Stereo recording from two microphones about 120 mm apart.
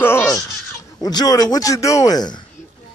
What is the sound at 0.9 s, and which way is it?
A man's voice, 30° left (ahead or behind).